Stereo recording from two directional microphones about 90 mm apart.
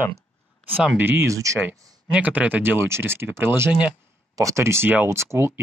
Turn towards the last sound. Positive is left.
turn(degrees=-30)  # may be behind; listen again after turning